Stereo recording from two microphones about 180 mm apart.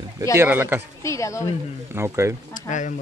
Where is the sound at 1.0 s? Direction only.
15° left (ahead or behind).